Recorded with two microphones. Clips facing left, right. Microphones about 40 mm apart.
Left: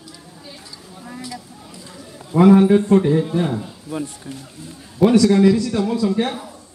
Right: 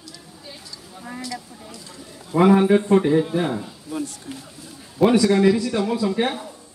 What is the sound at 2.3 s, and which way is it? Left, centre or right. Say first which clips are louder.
Speech: left 3 dB; centre.